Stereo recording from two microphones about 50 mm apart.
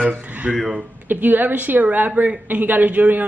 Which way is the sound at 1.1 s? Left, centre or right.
Right.